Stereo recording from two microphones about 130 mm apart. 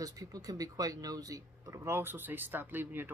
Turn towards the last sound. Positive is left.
turn(degrees=-15)  # may be behind; listen again after turning